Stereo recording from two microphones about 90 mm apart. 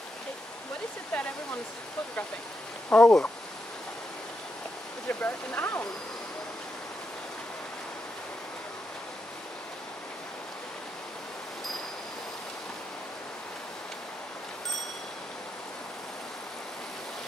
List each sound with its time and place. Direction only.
1.1 s speech: 10° left (ahead or behind)
2.9 s speech: 10° left (ahead or behind)
5.0 s speech: 20° left (ahead or behind)